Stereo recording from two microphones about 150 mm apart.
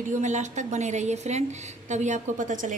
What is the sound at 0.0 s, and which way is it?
A woman's voice, 55° right (ahead or behind).